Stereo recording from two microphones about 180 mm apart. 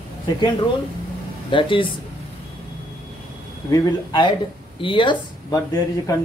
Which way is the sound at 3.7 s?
25° left (ahead or behind).